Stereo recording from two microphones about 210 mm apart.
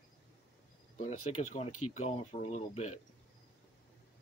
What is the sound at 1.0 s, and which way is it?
Speech, 30° left (ahead or behind).